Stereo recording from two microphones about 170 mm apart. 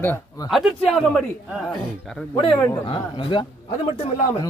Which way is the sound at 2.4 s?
30° left (ahead or behind).